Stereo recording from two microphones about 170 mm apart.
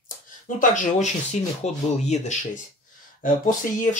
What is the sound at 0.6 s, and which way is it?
Speech, 45° left (ahead or behind).